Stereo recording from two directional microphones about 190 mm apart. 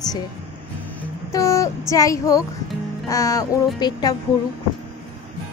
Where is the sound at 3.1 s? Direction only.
15° left (ahead or behind).